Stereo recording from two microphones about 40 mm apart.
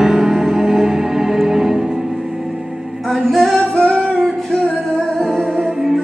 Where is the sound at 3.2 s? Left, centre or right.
Centre.